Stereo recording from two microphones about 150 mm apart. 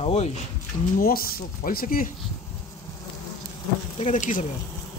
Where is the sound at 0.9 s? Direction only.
75° left (ahead or behind).